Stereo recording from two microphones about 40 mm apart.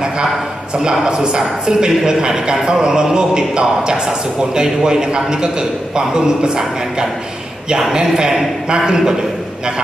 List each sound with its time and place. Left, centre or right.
1.0 s a man's voice: right